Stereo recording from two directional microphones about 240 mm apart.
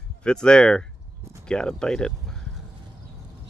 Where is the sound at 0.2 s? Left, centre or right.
Centre.